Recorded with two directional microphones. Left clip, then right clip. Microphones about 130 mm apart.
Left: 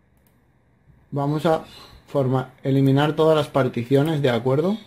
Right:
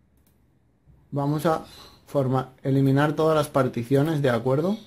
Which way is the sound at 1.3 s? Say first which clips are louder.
Left 3 dB; 15° left (ahead or behind).